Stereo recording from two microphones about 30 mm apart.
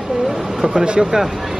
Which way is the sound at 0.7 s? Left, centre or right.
Right.